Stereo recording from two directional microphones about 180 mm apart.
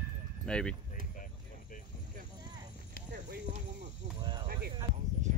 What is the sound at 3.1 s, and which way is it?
Clip-clop, 45° right (ahead or behind).